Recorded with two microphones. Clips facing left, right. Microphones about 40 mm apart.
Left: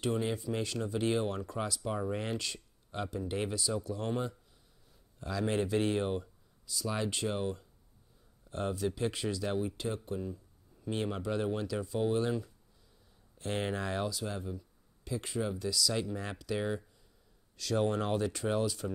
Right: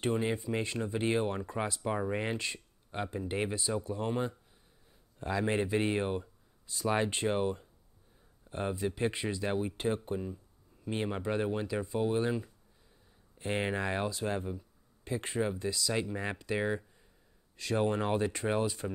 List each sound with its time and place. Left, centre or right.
0.1 s speech: right
6.7 s speech: right
9.8 s speech: right
10.2 s speech: right
14.6 s a sound: right
15.6 s speech: right